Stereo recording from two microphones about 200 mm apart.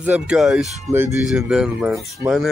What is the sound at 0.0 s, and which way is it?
Speech, 5° right (ahead or behind).